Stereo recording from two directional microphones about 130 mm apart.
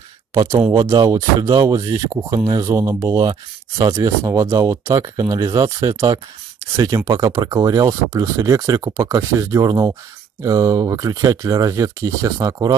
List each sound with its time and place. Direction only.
0.3 s speech: 25° right (ahead or behind)